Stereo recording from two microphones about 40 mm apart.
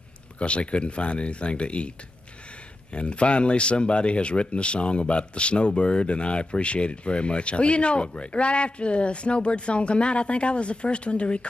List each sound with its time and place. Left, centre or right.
0.4 s speech: left
2.9 s speech: left